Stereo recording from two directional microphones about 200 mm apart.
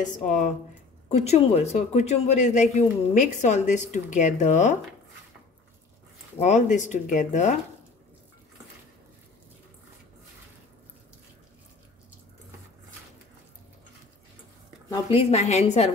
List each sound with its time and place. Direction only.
0.0 s speech: 40° left (ahead or behind)
6.3 s speech: 35° left (ahead or behind)
14.9 s speech: 25° left (ahead or behind)